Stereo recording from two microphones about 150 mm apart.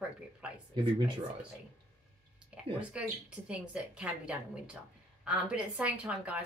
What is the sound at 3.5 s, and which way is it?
Speech, 5° right (ahead or behind).